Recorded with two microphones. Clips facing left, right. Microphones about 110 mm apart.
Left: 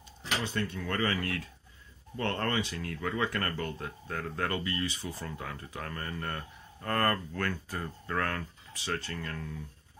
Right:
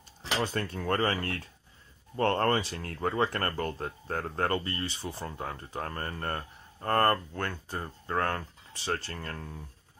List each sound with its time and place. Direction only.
0.4 s speech: 40° right (ahead or behind)